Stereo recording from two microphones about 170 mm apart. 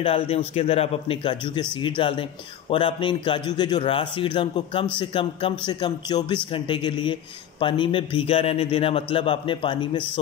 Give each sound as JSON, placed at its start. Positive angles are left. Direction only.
{"t": 0.0, "sound": "a man's voice", "side_deg": 35}